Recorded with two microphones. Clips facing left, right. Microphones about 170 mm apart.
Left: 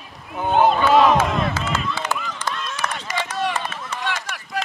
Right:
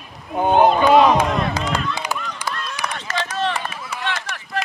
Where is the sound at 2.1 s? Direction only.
15° right (ahead or behind).